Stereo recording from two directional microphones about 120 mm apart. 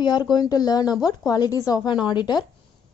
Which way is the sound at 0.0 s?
35° left (ahead or behind).